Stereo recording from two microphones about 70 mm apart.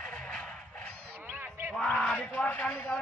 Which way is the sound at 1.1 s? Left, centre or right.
Right.